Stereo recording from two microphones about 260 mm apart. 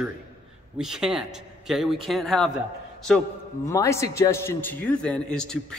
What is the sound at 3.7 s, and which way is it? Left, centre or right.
A man's voice, centre.